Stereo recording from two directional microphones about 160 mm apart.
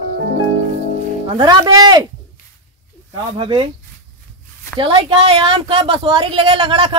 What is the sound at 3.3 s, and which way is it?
Speech, 35° right (ahead or behind).